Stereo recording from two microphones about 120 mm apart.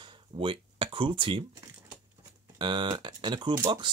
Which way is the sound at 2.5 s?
40° right (ahead or behind).